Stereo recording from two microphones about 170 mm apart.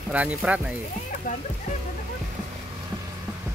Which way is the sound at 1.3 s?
55° left (ahead or behind).